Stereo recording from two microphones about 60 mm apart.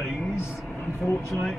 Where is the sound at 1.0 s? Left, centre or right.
Left.